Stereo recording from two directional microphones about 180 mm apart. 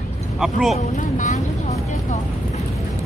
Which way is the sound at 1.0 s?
45° left (ahead or behind).